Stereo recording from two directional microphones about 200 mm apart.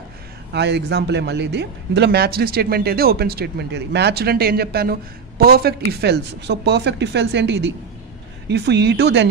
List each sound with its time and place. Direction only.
0.5 s speech: 60° right (ahead or behind)